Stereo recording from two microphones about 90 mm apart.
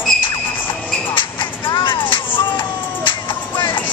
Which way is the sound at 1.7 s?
65° left (ahead or behind).